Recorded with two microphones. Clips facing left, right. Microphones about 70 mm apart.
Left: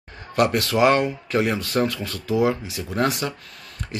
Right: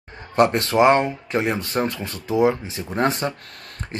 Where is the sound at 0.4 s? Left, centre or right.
Right.